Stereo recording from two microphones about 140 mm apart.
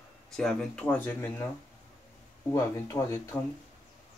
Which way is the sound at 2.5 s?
15° left (ahead or behind).